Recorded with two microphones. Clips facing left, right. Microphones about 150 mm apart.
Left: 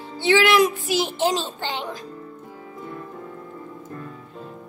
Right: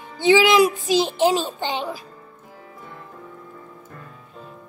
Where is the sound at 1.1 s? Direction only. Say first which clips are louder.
Right 4 dB; 10° right (ahead or behind).